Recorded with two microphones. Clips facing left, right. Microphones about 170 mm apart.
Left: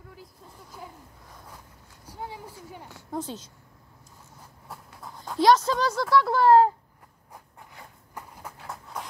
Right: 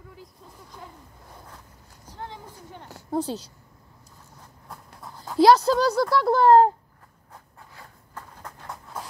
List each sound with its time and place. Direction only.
0.1 s vehicle: 5° left (ahead or behind)
2.0 s a sound: 10° left (ahead or behind)
2.9 s speech: 35° right (ahead or behind)
4.6 s train: centre (ahead or behind)
5.4 s speech: 35° right (ahead or behind)
7.3 s a sound: 20° left (ahead or behind); by 9.0 s centre (ahead or behind)